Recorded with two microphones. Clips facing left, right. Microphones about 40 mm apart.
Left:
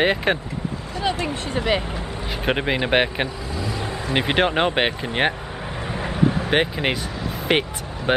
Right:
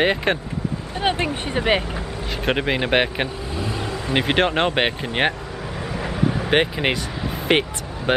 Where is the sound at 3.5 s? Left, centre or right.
Right.